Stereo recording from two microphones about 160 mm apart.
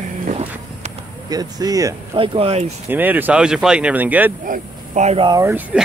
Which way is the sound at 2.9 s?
10° right (ahead or behind).